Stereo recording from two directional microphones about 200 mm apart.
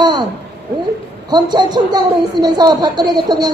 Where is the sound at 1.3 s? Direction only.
20° right (ahead or behind).